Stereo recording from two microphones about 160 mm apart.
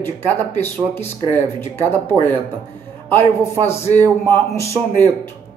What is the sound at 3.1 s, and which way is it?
Speech, 15° left (ahead or behind).